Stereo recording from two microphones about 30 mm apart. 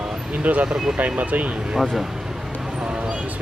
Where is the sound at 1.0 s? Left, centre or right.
Right.